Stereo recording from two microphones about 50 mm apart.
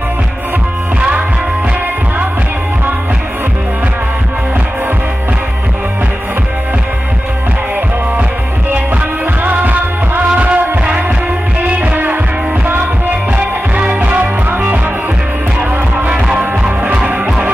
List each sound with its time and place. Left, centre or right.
9.2 s music: right
11.6 s music: right
13.4 s music: right
16.1 s music: centre